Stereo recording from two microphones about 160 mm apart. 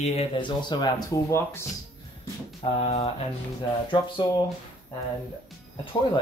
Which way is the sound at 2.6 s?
35° left (ahead or behind).